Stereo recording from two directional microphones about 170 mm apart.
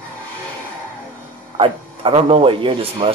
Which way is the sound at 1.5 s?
30° right (ahead or behind).